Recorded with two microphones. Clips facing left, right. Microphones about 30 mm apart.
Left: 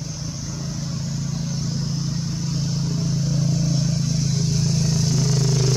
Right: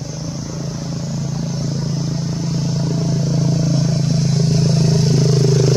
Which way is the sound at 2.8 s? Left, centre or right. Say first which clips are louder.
Right 5 dB; right.